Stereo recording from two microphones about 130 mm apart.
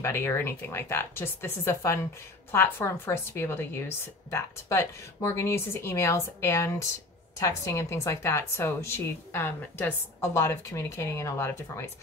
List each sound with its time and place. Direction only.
0.0 s a woman's voice: 15° left (ahead or behind)